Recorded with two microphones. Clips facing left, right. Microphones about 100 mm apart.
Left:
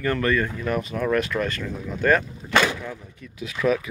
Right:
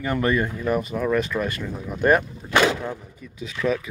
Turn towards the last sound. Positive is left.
turn(degrees=5)  # may be behind; listen again after turning